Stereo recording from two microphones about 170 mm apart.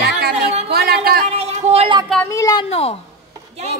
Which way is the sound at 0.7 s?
65° right (ahead or behind).